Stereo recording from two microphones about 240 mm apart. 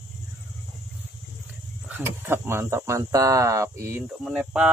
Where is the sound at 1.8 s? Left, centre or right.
Centre.